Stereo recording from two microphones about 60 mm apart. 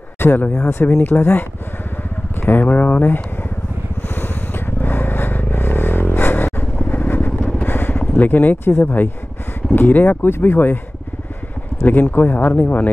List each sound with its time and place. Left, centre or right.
0.2 s speech: left
2.4 s speech: left
4.1 s a sound: left
6.8 s vehicle: left
8.2 s speech: left
11.8 s speech: left